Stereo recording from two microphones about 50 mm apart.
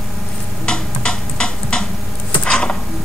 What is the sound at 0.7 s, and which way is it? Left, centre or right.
Tick-tock, centre.